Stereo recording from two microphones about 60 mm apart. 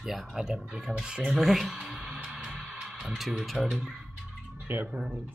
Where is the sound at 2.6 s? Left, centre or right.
Centre.